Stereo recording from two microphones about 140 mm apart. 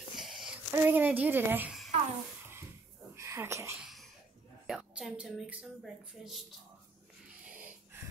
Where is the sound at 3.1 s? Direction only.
20° right (ahead or behind).